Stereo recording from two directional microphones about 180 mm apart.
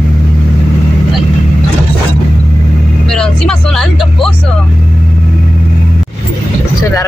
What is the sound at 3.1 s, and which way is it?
Vehicle, 5° left (ahead or behind).